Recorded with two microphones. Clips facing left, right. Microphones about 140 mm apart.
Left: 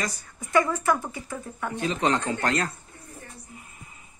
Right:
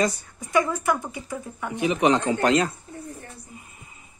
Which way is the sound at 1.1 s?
15° right (ahead or behind).